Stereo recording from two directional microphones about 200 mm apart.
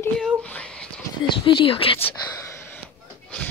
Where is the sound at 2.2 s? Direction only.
15° left (ahead or behind).